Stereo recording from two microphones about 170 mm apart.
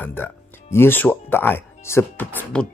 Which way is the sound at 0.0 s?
15° left (ahead or behind).